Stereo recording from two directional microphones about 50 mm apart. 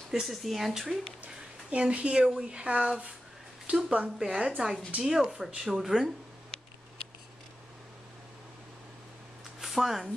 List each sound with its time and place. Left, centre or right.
0.1 s speech: centre
1.2 s speech: right
4.3 s speech: centre
9.6 s speech: centre